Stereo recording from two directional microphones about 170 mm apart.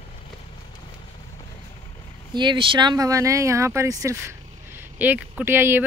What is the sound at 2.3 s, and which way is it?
Speech, 25° right (ahead or behind).